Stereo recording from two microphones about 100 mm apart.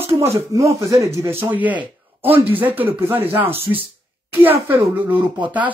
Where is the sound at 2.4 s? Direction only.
20° right (ahead or behind).